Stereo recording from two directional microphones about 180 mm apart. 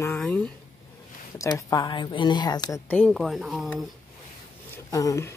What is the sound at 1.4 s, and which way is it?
Speech, 20° left (ahead or behind).